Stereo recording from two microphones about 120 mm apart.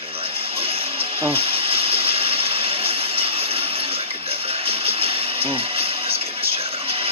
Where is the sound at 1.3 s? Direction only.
50° right (ahead or behind).